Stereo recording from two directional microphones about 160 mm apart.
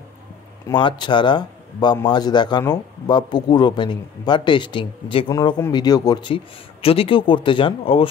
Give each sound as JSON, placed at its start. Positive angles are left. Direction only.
{"t": 0.7, "sound": "speech", "side_deg": 30}